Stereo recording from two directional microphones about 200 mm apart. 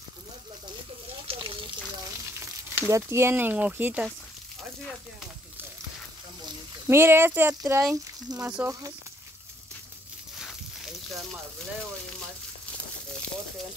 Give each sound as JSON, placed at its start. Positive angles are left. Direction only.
{"t": 1.2, "sound": "a sound", "side_deg": -25}
{"t": 2.3, "sound": "speech", "side_deg": -15}
{"t": 6.9, "sound": "speech", "side_deg": -10}